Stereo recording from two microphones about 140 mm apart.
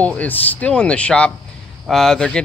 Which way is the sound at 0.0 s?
10° left (ahead or behind).